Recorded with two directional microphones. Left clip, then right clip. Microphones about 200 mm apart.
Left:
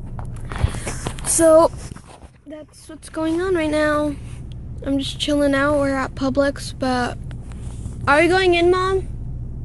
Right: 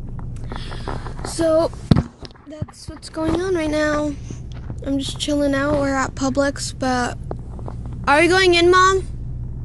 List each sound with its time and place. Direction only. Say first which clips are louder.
1.4 s speech: left 5 dB; 5° left (ahead or behind)
3.2 s speech: left 1 dB; 10° right (ahead or behind)
5.9 s a woman's voice: right 1 dB; 20° right (ahead or behind)
8.3 s a woman's voice: right 2 dB; 30° right (ahead or behind)